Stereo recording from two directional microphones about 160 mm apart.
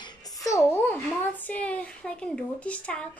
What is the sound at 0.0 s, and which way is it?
A woman's voice, 20° left (ahead or behind).